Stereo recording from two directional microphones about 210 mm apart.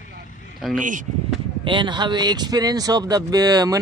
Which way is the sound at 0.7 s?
40° right (ahead or behind).